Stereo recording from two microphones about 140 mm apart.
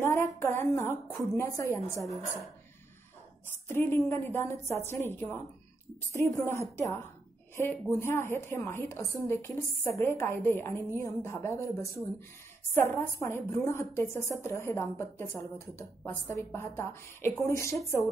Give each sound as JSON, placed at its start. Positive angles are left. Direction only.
{"t": 0.0, "sound": "a sound", "side_deg": 15}
{"t": 0.4, "sound": "a woman's voice", "side_deg": 15}
{"t": 3.6, "sound": "a woman's voice", "side_deg": 15}
{"t": 8.0, "sound": "a woman's voice", "side_deg": 15}